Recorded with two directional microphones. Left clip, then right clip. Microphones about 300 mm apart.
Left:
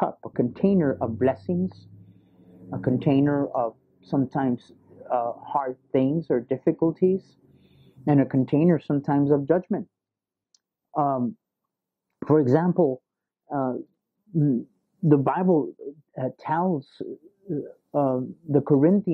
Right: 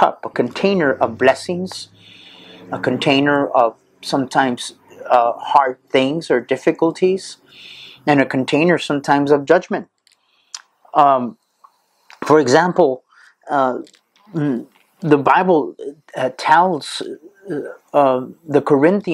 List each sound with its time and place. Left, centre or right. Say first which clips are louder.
0.0 s speech: right 10 dB; centre
10.9 s speech: right 12 dB; centre
12.7 s speech: right 8 dB; right